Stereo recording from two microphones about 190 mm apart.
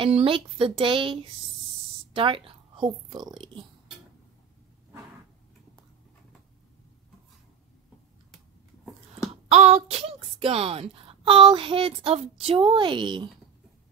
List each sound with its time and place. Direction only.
0.0 s a woman's voice: 30° right (ahead or behind)
9.3 s speech: 35° right (ahead or behind)